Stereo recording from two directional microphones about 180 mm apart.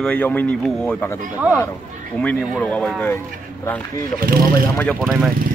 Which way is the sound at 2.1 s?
5° left (ahead or behind).